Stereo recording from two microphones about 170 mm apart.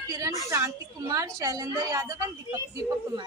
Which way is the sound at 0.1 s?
20° right (ahead or behind).